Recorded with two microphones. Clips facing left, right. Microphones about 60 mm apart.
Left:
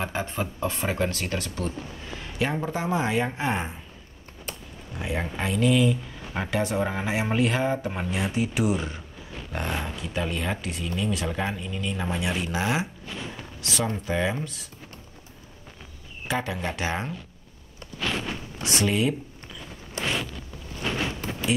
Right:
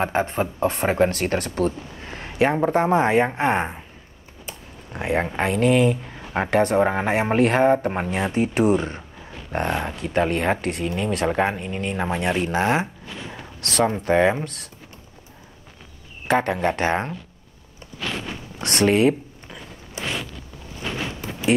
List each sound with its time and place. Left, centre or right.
0.0 s speech: right
4.9 s speech: right
13.6 s speech: right
14.0 s speech: right
16.3 s speech: right
18.6 s speech: right